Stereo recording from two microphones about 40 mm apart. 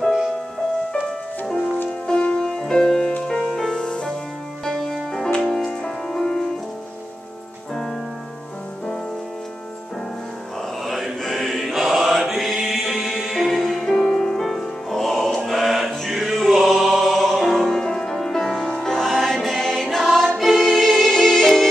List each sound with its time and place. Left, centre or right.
2.0 s music: left
2.4 s music: centre
5.1 s music: centre
10.8 s mantra: centre
12.9 s music: centre
13.2 s music: centre
13.5 s music: centre